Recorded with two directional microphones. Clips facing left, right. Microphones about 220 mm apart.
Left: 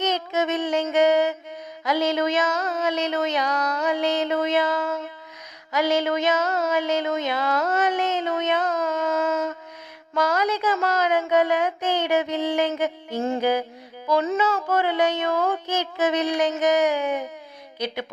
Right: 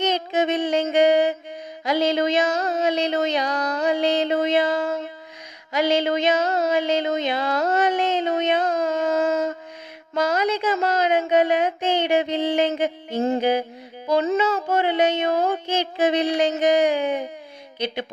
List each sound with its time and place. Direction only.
0.0 s music: 30° right (ahead or behind)
1.9 s a sound: 30° right (ahead or behind)
10.1 s speech: 25° right (ahead or behind)